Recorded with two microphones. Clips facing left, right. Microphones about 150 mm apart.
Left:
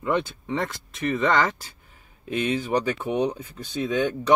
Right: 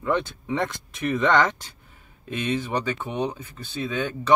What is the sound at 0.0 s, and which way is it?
Speech, 10° left (ahead or behind).